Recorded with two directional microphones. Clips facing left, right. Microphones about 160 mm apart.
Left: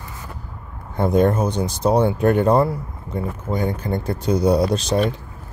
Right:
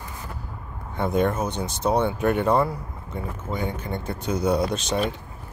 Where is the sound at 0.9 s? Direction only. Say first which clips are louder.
Left 5 dB; 40° left (ahead or behind).